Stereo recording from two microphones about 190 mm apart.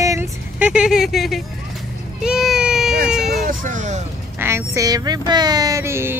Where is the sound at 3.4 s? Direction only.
40° right (ahead or behind).